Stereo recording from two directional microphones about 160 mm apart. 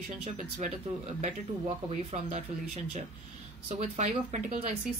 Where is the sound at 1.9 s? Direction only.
40° right (ahead or behind).